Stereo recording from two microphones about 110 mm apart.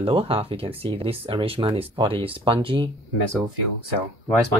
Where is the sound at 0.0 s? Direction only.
60° right (ahead or behind).